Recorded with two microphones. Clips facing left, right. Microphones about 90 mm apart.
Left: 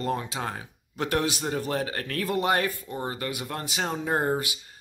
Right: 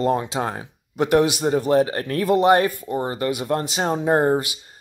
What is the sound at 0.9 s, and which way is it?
Speech, 20° right (ahead or behind).